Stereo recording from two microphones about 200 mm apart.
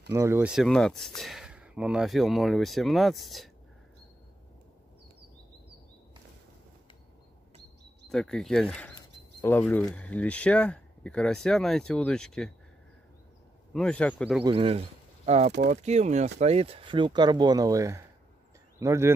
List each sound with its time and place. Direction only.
0.1 s speech: 10° right (ahead or behind)
8.1 s speech: 5° left (ahead or behind)
13.7 s speech: 5° left (ahead or behind)
14.4 s speech: 25° right (ahead or behind)